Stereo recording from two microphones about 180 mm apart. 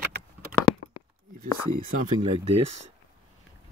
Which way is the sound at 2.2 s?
35° right (ahead or behind).